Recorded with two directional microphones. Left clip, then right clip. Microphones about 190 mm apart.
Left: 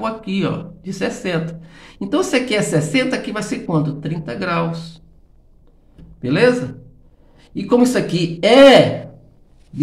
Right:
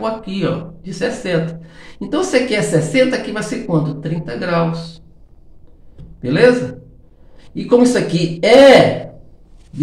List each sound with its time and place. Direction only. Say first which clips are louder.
0.0 s speech: right 2 dB; 15° left (ahead or behind)
6.2 s speech: right 3 dB; 10° left (ahead or behind)